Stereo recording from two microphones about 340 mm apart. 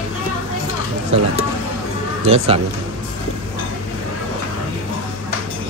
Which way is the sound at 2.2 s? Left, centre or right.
Centre.